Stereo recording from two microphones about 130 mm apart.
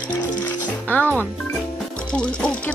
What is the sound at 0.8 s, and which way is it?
Music, 15° left (ahead or behind).